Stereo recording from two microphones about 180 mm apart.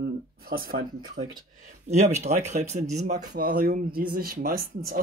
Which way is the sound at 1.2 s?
65° right (ahead or behind).